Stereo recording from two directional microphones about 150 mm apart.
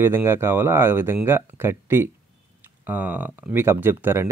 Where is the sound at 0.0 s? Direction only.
15° right (ahead or behind).